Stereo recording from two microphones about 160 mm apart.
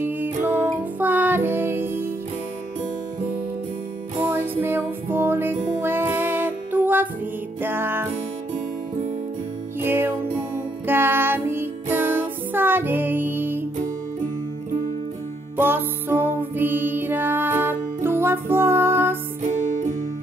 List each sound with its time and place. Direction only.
0.0 s music: 10° right (ahead or behind)
4.2 s music: 15° right (ahead or behind)
9.8 s music: 15° right (ahead or behind)
15.5 s music: 15° right (ahead or behind)
19.4 s music: 50° right (ahead or behind)